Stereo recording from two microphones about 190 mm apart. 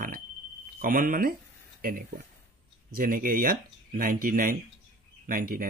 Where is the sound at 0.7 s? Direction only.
45° right (ahead or behind).